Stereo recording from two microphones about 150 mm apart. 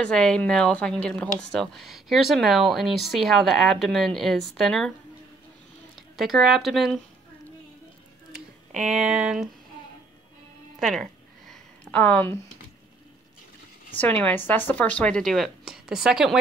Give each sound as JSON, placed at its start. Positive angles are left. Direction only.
{"t": 0.0, "sound": "speech", "side_deg": 5}
{"t": 6.1, "sound": "speech", "side_deg": 0}
{"t": 8.9, "sound": "speech", "side_deg": -5}
{"t": 10.8, "sound": "a sound", "side_deg": 0}
{"t": 13.9, "sound": "speech", "side_deg": 10}